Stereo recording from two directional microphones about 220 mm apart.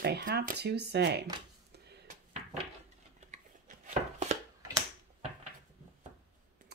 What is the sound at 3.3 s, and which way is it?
Chopping, 30° right (ahead or behind).